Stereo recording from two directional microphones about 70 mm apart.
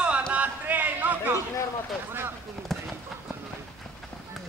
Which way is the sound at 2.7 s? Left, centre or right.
Centre.